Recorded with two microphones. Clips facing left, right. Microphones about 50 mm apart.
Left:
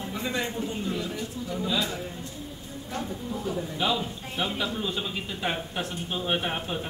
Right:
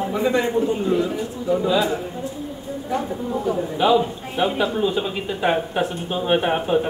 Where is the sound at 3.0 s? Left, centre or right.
Right.